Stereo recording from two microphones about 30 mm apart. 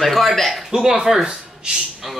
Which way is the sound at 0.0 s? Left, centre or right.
Centre.